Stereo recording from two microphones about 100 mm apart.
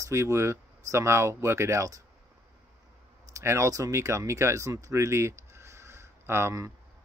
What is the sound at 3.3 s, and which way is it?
Speech, 30° right (ahead or behind).